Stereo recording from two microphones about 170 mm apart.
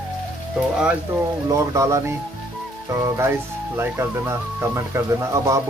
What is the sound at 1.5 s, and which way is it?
Speech, 20° right (ahead or behind).